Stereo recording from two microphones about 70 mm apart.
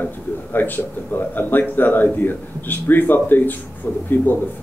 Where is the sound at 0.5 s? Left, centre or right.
Left.